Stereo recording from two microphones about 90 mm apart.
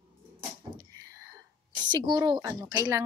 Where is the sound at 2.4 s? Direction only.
40° right (ahead or behind).